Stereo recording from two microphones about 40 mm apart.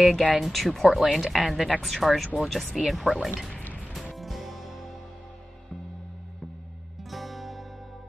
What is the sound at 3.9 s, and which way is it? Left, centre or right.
Music, centre.